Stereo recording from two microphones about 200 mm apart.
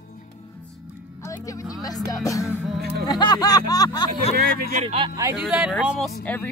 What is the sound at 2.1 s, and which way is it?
Speech, 15° left (ahead or behind).